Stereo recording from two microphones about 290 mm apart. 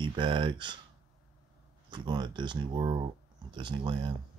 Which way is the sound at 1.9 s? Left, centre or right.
Centre.